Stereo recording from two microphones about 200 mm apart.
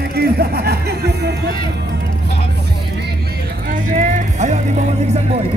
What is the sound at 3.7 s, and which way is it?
Music, 40° right (ahead or behind).